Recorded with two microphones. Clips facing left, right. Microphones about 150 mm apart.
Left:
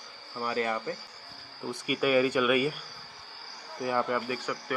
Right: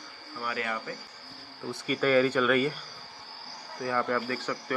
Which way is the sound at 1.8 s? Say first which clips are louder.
Right 1 dB; 10° left (ahead or behind).